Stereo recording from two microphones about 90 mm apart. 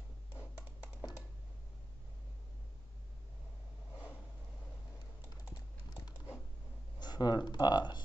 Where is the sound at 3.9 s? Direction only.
20° left (ahead or behind).